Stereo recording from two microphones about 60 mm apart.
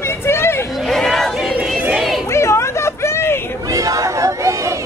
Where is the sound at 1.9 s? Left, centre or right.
Centre.